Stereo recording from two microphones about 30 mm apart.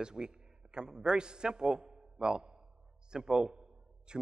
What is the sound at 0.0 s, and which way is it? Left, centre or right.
A man's voice, right.